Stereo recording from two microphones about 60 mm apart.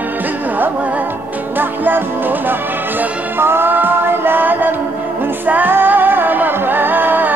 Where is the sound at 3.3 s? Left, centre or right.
Right.